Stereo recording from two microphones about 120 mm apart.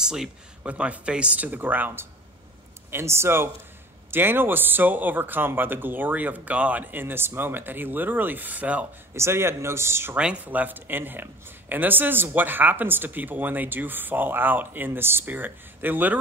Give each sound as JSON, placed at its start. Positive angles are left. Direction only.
{"t": 0.0, "sound": "speech", "side_deg": -5}
{"t": 10.1, "sound": "speech", "side_deg": -10}